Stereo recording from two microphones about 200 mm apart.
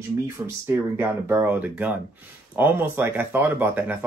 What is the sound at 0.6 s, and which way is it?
Speech, 10° right (ahead or behind).